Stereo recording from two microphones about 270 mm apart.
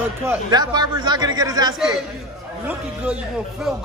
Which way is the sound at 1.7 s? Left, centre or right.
Centre.